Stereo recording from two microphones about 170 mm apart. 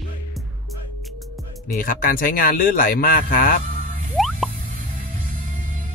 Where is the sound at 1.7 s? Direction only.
55° left (ahead or behind).